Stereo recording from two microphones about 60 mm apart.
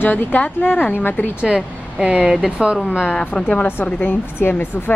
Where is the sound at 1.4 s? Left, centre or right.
Centre.